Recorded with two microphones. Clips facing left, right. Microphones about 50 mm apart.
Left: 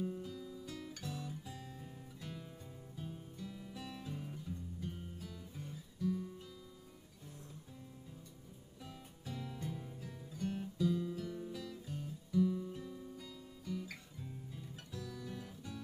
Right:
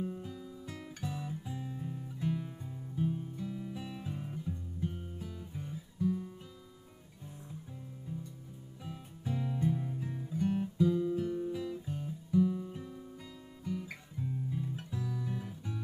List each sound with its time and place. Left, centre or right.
0.0 s guitar: centre
2.1 s music: centre
8.8 s music: centre